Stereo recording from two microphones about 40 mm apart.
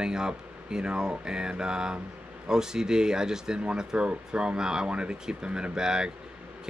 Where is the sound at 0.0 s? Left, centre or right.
Centre.